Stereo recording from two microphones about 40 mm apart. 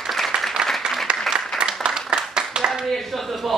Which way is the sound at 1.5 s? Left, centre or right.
Centre.